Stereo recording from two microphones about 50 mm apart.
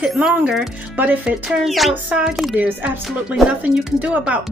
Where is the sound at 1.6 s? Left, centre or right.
Centre.